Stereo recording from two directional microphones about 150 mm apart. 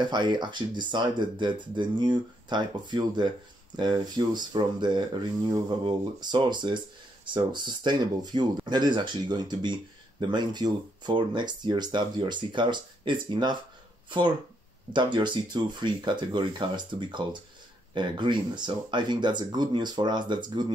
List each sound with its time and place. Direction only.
0.0 s speech: 30° right (ahead or behind)
14.9 s speech: 30° right (ahead or behind)